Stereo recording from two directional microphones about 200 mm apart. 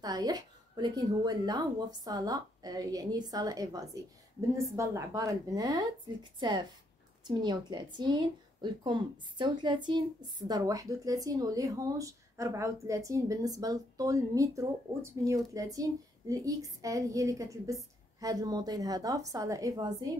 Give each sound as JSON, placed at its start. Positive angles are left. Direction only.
{"t": 0.0, "sound": "a woman's voice", "side_deg": -20}
{"t": 7.2, "sound": "a woman's voice", "side_deg": -20}